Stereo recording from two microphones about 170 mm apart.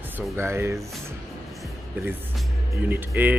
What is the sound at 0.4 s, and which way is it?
Speech, 15° right (ahead or behind).